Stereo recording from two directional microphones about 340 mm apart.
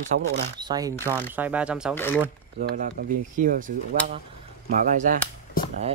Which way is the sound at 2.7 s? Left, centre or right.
Right.